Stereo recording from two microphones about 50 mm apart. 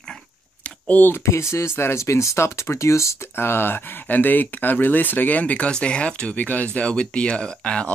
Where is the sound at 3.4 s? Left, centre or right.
Left.